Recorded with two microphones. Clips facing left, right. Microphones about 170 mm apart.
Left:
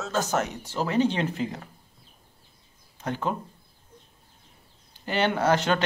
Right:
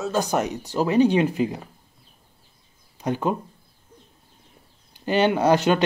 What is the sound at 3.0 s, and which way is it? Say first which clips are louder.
Speech: right 5 dB; 15° right (ahead or behind).